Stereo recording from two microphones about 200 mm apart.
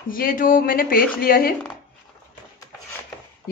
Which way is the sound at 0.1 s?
45° left (ahead or behind).